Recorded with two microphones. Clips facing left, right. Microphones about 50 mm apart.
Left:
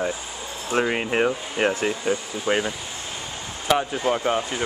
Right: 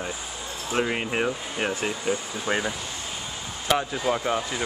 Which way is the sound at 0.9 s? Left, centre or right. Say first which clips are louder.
Left 4 dB; left.